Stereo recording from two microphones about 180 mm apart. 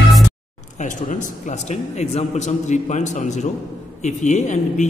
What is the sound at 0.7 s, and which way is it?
A man's voice, 45° left (ahead or behind).